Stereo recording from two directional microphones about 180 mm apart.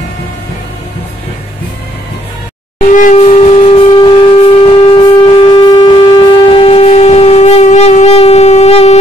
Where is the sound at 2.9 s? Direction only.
45° left (ahead or behind).